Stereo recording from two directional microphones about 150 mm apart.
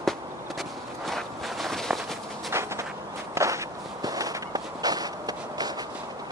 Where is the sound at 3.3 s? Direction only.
20° right (ahead or behind).